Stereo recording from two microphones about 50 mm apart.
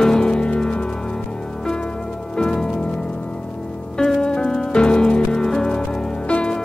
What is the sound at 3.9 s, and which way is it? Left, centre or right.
Music, centre.